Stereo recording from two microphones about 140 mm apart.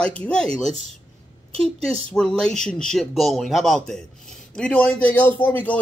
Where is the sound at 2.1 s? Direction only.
5° left (ahead or behind).